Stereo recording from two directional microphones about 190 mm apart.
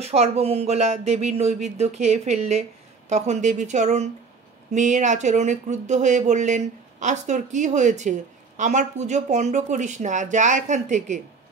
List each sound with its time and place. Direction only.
0.0 s speech: 35° right (ahead or behind)